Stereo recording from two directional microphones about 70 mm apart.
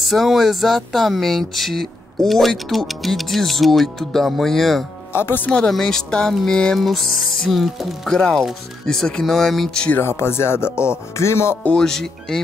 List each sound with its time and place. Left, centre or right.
0.0 s speech: centre
5.1 s speech: left
5.5 s speech: centre
9.9 s speech: left
11.7 s speech: centre